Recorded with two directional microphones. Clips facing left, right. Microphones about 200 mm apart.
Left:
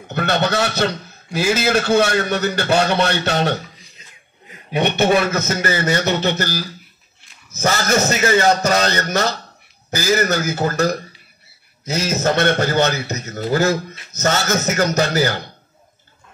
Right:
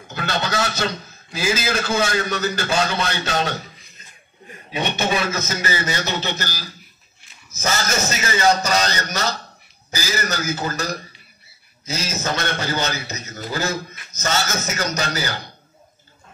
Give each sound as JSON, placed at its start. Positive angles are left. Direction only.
{"t": 0.1, "sound": "a man's voice", "side_deg": 60}
{"t": 4.6, "sound": "a man's voice", "side_deg": 60}